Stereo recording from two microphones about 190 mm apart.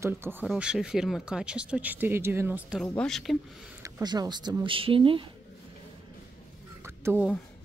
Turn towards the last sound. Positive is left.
turn(degrees=-5)  # may be behind; listen again after turning